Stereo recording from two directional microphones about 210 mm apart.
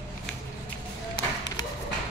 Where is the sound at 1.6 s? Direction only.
20° left (ahead or behind).